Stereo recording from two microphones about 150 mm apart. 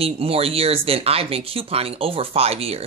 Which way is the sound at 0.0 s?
40° right (ahead or behind).